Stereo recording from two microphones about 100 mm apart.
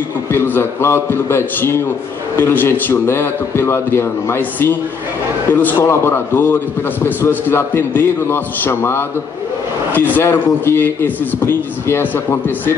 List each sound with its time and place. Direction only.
0.3 s a man's voice: 25° left (ahead or behind)